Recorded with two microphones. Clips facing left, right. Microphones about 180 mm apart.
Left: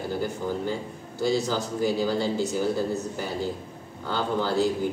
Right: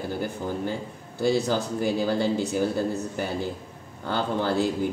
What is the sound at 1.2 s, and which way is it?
Speech, 55° right (ahead or behind).